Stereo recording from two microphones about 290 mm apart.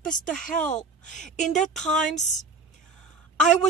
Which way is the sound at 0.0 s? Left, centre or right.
Centre.